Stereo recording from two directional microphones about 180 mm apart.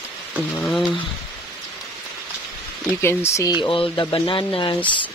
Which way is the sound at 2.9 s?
15° left (ahead or behind).